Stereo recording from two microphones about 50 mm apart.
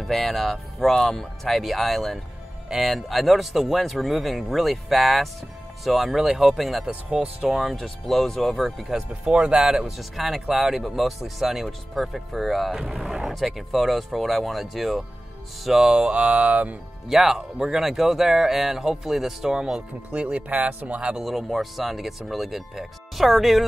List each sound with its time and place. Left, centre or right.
0.0 s speech: centre
7.7 s speech: centre
8.9 s speech: centre
16.0 s speech: right
17.1 s speech: centre
20.2 s speech: right
21.2 s speech: centre